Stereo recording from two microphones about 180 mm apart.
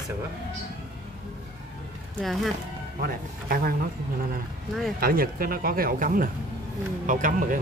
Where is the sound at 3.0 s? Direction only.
55° right (ahead or behind).